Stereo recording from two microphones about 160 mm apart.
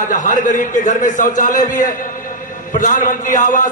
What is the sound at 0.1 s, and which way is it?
A man's voice, 55° left (ahead or behind).